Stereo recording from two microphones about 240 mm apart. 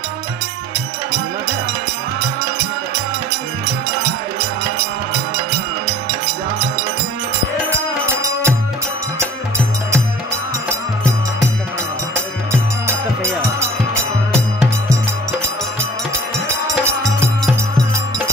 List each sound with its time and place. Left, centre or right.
8.2 s music: centre
12.8 s music: centre
16.6 s music: centre